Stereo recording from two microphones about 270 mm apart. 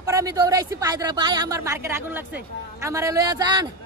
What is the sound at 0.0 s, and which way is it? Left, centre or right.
A man's voice, centre.